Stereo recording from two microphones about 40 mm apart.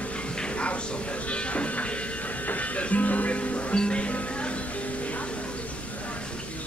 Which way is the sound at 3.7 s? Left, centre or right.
Left.